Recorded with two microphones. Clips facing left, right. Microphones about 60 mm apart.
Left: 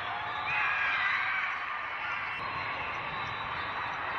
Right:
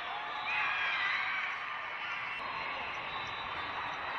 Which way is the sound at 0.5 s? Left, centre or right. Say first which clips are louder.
Left 4 dB; left.